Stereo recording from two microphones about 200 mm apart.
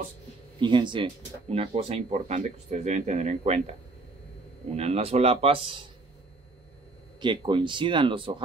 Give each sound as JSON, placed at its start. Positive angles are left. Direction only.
{"t": 0.6, "sound": "speech", "side_deg": -25}
{"t": 4.7, "sound": "speech", "side_deg": -30}
{"t": 7.2, "sound": "speech", "side_deg": -25}